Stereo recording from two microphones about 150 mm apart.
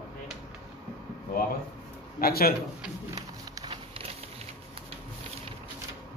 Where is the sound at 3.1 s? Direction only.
25° right (ahead or behind).